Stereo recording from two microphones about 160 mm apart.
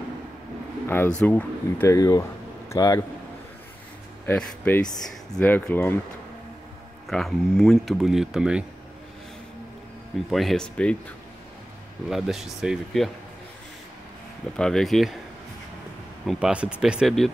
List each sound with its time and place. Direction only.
0.8 s speech: 15° left (ahead or behind)
2.0 s speech: 20° left (ahead or behind)
4.3 s speech: 10° left (ahead or behind)
7.1 s speech: centre (ahead or behind)
10.3 s speech: centre (ahead or behind)
12.1 s speech: centre (ahead or behind)
14.6 s speech: 5° left (ahead or behind)
16.3 s speech: 5° right (ahead or behind)